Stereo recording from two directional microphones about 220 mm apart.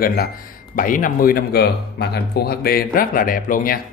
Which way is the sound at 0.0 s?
40° left (ahead or behind).